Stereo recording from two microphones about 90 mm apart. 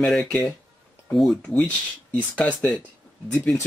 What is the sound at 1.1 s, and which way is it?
Speech, 5° left (ahead or behind).